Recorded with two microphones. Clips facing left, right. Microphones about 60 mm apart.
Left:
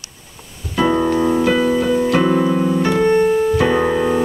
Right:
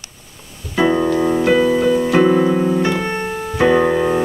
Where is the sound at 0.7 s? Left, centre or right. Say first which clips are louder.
Right 1 dB; centre.